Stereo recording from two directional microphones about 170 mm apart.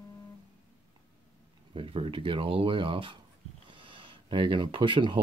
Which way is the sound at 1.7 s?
30° right (ahead or behind).